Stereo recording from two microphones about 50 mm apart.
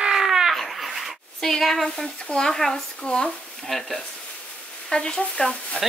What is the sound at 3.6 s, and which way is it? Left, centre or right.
Speech, centre.